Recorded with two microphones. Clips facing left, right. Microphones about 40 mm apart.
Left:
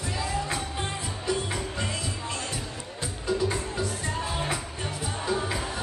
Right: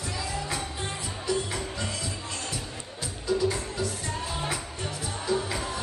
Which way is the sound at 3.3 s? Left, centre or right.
Left.